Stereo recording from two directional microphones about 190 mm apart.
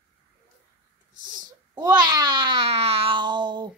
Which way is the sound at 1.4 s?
20° right (ahead or behind).